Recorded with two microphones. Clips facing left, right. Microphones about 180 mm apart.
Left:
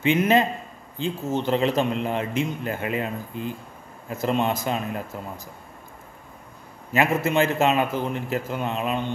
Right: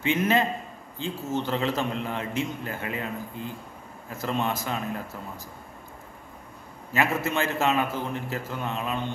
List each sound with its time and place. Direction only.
0.0 s a man's voice: 20° left (ahead or behind)
6.9 s a man's voice: 15° left (ahead or behind)